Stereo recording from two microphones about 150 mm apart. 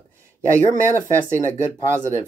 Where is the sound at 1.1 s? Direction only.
15° right (ahead or behind).